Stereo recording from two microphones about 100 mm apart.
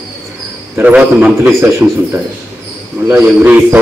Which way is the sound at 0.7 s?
15° right (ahead or behind).